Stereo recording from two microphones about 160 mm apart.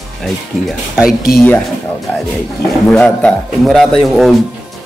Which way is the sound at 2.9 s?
5° left (ahead or behind).